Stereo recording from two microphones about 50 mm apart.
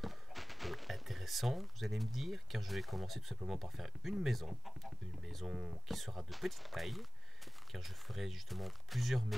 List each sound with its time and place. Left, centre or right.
0.0 s speech: centre
5.5 s speech: centre
5.9 s speech: centre